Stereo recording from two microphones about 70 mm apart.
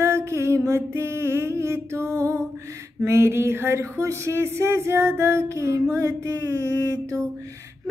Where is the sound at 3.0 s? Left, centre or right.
Right.